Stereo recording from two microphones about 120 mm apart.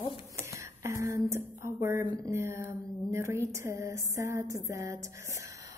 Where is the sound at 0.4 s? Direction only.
20° right (ahead or behind).